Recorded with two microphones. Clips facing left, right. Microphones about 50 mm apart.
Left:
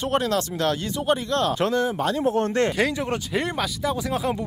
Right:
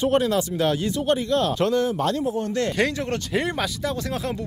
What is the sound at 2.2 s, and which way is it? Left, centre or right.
Speech, left.